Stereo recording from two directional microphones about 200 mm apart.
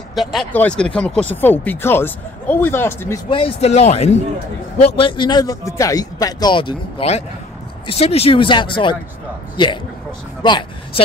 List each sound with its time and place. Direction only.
0.1 s speech: centre (ahead or behind)
3.3 s a man's voice: 25° left (ahead or behind)